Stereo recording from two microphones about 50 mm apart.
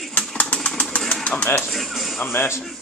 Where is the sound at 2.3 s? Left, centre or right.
Left.